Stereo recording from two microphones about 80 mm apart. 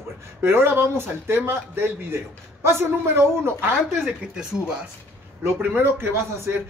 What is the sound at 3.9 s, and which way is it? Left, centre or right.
Speech, centre.